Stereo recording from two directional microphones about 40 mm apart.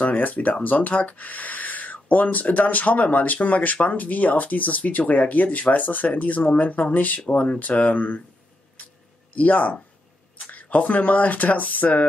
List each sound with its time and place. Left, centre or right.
0.0 s speech: left
7.2 s speech: left
7.6 s speech: left
9.3 s speech: left